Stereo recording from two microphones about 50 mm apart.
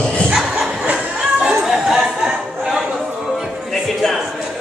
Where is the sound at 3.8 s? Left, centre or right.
Centre.